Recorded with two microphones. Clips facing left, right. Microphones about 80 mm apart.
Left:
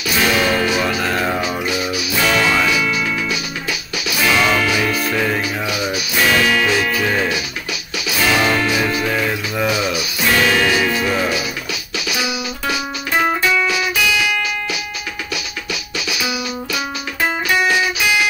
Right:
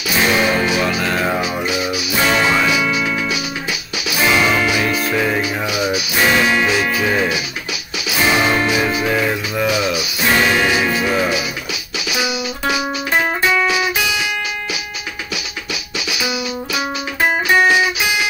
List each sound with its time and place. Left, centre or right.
0.2 s music: right
0.7 s music: centre
1.3 s music: centre
4.2 s music: centre
4.8 s music: centre
8.2 s music: right; by 11.3 s centre
12.2 s music: centre
16.1 s music: centre